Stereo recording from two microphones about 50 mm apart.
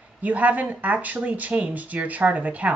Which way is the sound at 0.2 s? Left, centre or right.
Right.